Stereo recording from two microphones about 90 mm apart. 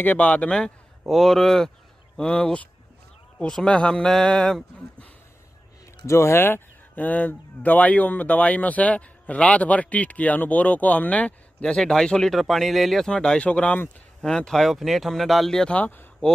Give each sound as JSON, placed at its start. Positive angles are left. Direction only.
{"t": 0.0, "sound": "speech", "side_deg": 15}
{"t": 6.0, "sound": "speech", "side_deg": 30}
{"t": 15.7, "sound": "speech", "side_deg": 15}